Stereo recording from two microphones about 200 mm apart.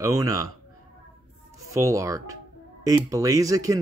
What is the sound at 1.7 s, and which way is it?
Speech, 15° right (ahead or behind).